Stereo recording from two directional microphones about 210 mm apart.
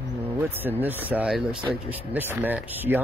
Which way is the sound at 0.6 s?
10° right (ahead or behind).